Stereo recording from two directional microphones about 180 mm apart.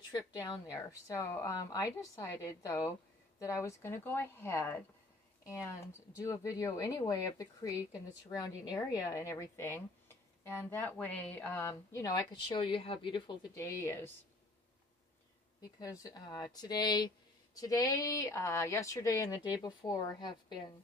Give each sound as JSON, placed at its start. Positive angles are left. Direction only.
{"t": 0.1, "sound": "a woman's voice", "side_deg": 20}
{"t": 6.2, "sound": "a woman's voice", "side_deg": 20}
{"t": 15.8, "sound": "speech", "side_deg": 20}